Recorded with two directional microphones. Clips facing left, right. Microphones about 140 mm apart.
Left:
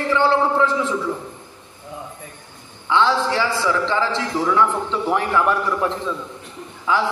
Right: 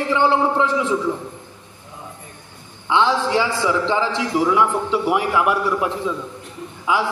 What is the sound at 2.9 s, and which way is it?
A man's voice, 15° right (ahead or behind).